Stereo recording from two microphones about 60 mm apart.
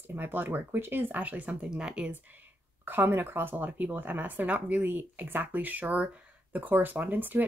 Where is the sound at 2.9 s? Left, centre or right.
Right.